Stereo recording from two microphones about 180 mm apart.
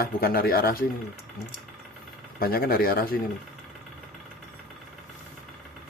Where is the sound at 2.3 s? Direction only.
55° left (ahead or behind).